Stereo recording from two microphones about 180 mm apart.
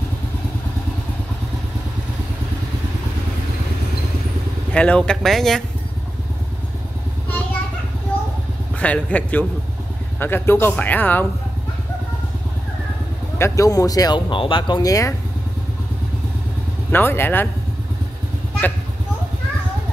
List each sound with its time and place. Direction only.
4.7 s speech: 5° left (ahead or behind)
8.7 s speech: 10° left (ahead or behind)
13.4 s speech: 20° left (ahead or behind)
16.9 s speech: 10° left (ahead or behind)